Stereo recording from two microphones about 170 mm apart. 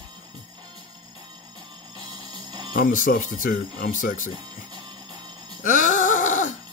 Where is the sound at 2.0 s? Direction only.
25° right (ahead or behind).